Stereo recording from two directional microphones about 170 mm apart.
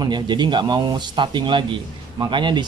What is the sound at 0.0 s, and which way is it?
Speech, 25° right (ahead or behind).